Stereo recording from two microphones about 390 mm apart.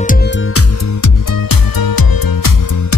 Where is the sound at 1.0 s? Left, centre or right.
Left.